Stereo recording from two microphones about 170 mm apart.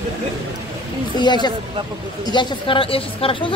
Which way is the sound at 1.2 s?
25° left (ahead or behind).